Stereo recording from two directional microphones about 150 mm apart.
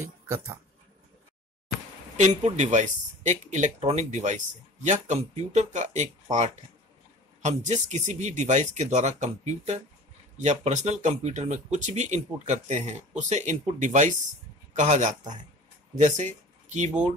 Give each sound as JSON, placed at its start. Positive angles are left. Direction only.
{"t": 2.1, "sound": "speech", "side_deg": -50}